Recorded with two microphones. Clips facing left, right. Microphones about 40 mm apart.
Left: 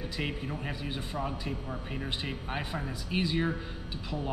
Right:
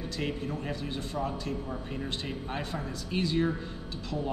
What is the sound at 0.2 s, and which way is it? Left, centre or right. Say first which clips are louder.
A man's voice: right 2 dB; centre.